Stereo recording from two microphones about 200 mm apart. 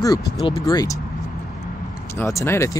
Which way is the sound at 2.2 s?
15° left (ahead or behind).